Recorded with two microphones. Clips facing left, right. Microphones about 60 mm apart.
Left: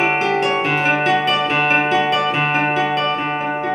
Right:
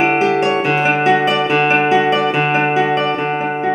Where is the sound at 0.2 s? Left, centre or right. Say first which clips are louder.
Right 3 dB; centre.